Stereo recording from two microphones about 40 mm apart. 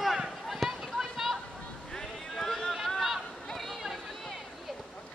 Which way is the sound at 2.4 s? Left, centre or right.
Centre.